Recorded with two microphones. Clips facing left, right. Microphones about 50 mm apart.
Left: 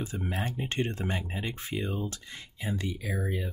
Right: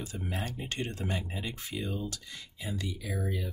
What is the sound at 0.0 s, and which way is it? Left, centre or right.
Speech, left.